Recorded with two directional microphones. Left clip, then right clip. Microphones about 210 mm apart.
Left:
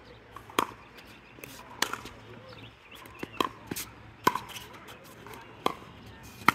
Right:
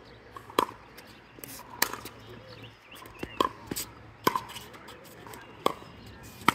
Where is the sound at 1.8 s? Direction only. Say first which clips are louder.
Right 1 dB; 30° right (ahead or behind).